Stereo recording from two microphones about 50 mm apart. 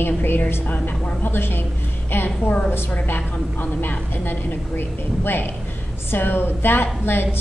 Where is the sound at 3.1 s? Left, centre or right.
Left.